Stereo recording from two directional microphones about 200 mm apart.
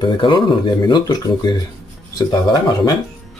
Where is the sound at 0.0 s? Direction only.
25° left (ahead or behind).